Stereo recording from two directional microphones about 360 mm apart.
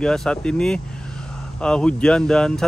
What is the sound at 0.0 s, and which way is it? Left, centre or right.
Speech, centre.